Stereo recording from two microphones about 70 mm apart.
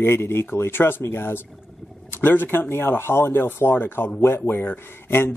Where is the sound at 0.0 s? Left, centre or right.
Left.